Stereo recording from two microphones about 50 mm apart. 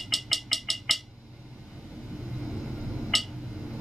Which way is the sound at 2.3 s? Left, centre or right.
Centre.